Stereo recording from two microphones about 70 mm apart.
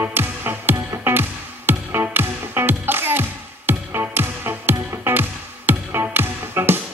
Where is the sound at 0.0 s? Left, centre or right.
Right.